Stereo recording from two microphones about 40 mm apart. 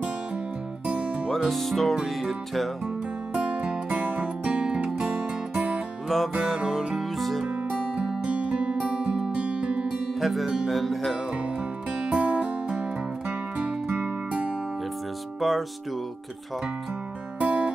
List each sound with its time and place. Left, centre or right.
0.8 s music: right
1.5 s music: centre
3.3 s music: right
4.9 s music: centre
7.0 s music: centre
7.4 s music: centre
9.8 s music: centre
12.0 s music: right
13.8 s music: right
15.4 s music: centre
17.4 s music: right